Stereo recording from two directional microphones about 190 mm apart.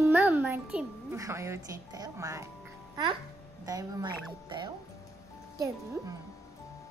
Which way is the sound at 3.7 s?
20° right (ahead or behind).